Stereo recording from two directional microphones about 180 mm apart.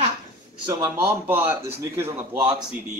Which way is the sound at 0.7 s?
15° right (ahead or behind).